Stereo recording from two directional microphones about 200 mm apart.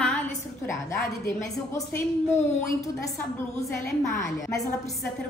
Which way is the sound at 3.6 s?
15° left (ahead or behind).